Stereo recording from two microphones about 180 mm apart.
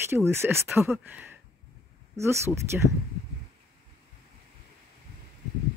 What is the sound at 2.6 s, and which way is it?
Speech, 15° right (ahead or behind).